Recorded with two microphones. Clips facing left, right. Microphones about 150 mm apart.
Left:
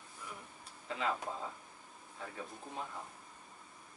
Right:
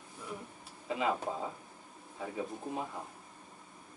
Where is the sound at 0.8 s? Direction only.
10° right (ahead or behind).